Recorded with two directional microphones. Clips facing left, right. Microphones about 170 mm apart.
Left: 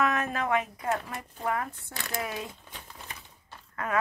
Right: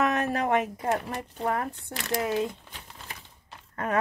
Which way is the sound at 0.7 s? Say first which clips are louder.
Right 3 dB; 30° right (ahead or behind).